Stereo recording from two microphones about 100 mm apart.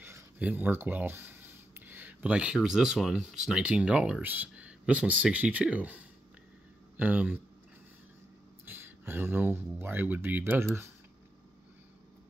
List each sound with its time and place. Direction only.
0.4 s speech: 15° right (ahead or behind)
8.6 s speech: 20° right (ahead or behind)